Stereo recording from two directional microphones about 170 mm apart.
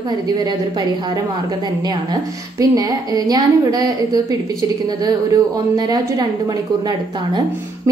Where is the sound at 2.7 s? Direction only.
20° right (ahead or behind).